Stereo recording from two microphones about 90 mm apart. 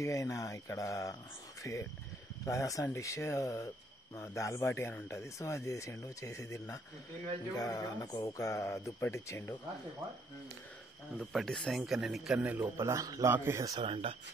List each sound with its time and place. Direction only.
0.0 s speech: 35° left (ahead or behind)
11.1 s speech: 5° left (ahead or behind)
12.4 s speech: 20° right (ahead or behind)
13.7 s speech: 90° right